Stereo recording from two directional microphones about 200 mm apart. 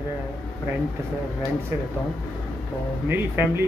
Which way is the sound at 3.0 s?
10° right (ahead or behind).